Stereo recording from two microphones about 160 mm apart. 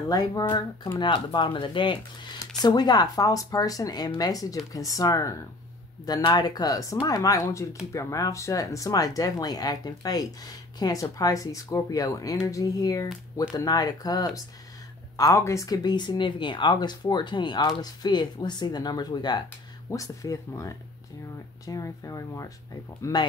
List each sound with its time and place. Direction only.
0.1 s speech: 25° left (ahead or behind)